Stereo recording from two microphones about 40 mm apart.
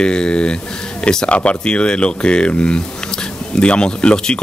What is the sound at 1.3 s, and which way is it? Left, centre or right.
Speech, left.